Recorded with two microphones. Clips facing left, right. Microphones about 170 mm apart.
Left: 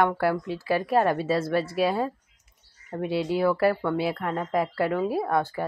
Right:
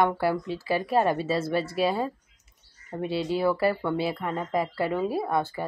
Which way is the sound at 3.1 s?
10° left (ahead or behind).